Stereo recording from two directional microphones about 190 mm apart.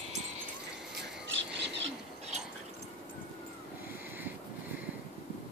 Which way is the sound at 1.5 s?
70° right (ahead or behind).